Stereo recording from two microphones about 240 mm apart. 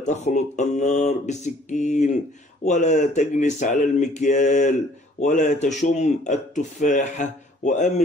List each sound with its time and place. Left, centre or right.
0.0 s speech: left